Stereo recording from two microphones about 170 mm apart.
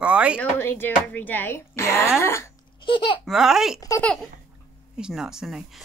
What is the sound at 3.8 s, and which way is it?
Speech, 20° left (ahead or behind).